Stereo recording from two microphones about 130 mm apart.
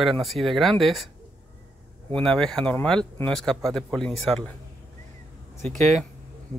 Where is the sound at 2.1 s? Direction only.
5° left (ahead or behind).